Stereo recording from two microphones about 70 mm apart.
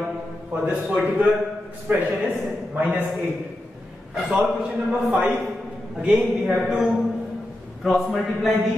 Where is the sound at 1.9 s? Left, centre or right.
Right.